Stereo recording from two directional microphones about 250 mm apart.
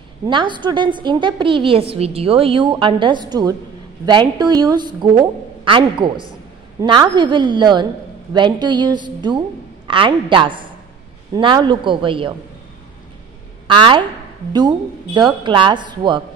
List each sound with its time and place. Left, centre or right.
0.3 s a woman's voice: centre
13.7 s a woman's voice: centre
15.1 s a woman's voice: centre